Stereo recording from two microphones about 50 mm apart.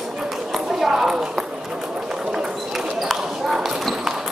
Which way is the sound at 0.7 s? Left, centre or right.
Centre.